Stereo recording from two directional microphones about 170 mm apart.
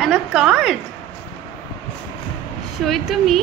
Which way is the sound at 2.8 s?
Centre (ahead or behind).